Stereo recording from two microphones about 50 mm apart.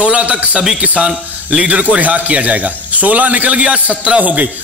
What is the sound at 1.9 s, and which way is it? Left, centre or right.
A man's voice, right.